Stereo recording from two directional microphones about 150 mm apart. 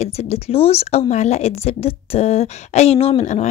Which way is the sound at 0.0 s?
45° left (ahead or behind).